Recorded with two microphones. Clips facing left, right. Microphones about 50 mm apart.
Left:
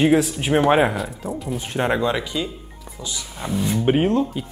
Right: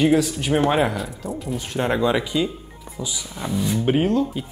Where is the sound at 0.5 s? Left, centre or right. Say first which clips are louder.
Left 1 dB; centre.